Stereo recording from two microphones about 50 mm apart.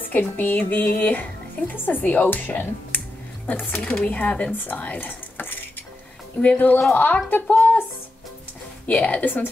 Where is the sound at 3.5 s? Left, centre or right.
Left.